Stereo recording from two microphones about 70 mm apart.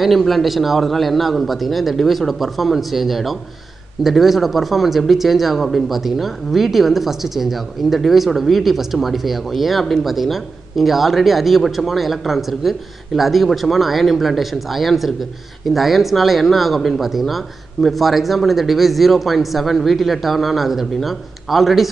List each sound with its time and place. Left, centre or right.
0.0 s speech: centre